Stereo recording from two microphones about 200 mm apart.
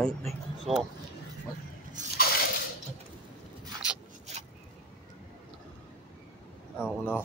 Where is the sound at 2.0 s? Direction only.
40° right (ahead or behind).